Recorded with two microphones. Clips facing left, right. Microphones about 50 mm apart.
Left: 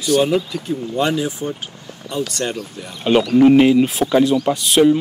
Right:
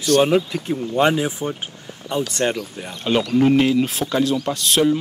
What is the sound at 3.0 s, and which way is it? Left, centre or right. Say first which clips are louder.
Speech: left 5 dB; centre.